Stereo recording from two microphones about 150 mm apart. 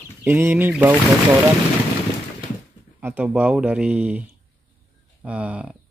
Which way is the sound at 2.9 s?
10° right (ahead or behind).